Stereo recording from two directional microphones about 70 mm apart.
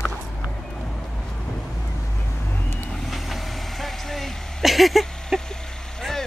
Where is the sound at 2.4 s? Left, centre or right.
Left.